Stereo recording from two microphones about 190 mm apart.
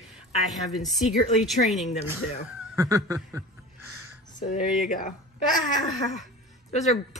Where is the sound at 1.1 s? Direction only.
35° left (ahead or behind).